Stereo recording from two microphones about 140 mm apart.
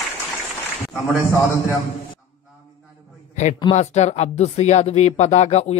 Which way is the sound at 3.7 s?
55° left (ahead or behind).